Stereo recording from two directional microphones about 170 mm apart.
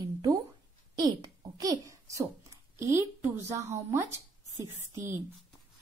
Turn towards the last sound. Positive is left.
turn(degrees=-15)  # may be behind; listen again after turning